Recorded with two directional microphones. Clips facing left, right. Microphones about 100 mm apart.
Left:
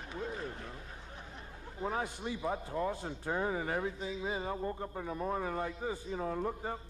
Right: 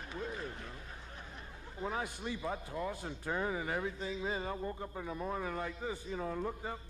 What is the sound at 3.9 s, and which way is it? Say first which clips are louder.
Speech: left 1 dB; 10° left (ahead or behind).